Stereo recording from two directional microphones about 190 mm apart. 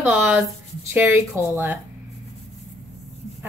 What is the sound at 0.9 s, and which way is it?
Speech, 10° right (ahead or behind).